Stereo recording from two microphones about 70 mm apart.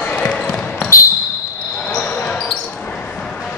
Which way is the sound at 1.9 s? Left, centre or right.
Centre.